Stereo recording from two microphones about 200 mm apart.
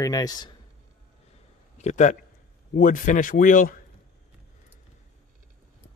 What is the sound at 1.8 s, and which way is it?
A man's voice, 35° left (ahead or behind).